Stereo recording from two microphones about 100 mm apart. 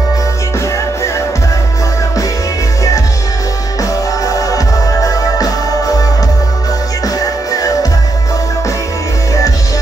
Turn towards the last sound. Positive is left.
turn(degrees=35)  # may be behind; listen again after turning